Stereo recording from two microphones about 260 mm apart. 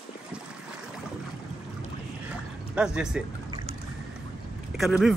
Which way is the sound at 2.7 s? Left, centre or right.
Centre.